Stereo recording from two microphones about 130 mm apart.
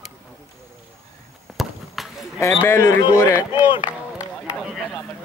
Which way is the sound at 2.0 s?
Centre (ahead or behind).